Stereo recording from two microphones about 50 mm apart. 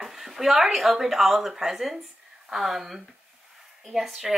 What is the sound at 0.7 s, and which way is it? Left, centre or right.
Speech, centre.